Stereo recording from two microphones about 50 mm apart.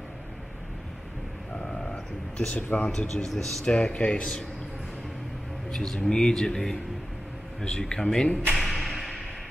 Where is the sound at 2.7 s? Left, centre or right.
Left.